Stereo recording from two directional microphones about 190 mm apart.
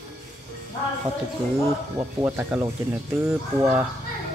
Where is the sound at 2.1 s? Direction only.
10° right (ahead or behind).